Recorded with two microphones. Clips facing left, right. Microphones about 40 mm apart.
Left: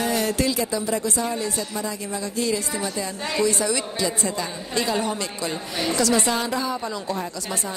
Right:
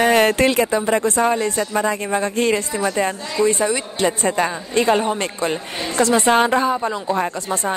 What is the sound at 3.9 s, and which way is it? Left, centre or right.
Speech, right.